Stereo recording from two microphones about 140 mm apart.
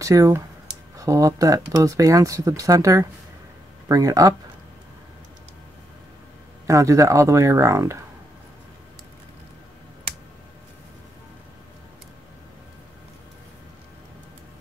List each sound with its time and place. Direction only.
0.0 s speech: 20° right (ahead or behind)
6.7 s speech: 25° right (ahead or behind)